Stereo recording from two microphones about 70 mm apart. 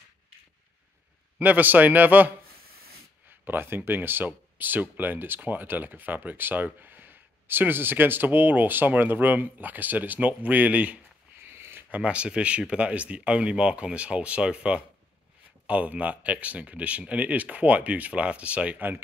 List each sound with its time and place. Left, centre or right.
1.4 s speech: right
3.4 s speech: right
11.4 s a sound: right
11.9 s speech: centre